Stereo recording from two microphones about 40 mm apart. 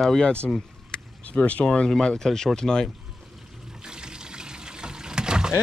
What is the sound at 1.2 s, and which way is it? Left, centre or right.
Speech, left.